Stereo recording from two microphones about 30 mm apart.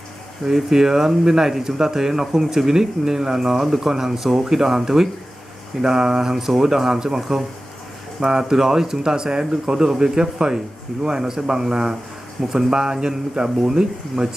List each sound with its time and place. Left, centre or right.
0.5 s speech: centre
7.2 s speech: centre
12.4 s speech: centre
12.7 s speech: right